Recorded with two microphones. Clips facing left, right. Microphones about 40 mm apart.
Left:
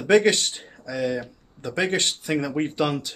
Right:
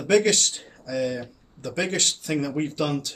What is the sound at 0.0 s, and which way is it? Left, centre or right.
Speech, left.